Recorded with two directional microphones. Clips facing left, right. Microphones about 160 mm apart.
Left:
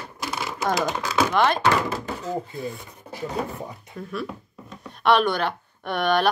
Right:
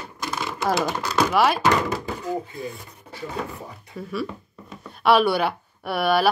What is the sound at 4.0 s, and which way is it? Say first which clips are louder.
A woman's voice: right 2 dB; 5° right (ahead or behind).